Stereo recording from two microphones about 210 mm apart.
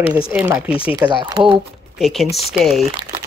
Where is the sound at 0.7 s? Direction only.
25° left (ahead or behind).